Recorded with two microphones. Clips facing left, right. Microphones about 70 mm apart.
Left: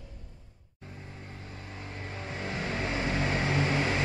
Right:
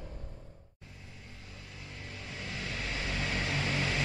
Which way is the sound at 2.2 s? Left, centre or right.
Left.